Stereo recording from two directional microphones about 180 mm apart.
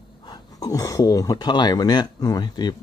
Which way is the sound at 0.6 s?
20° left (ahead or behind).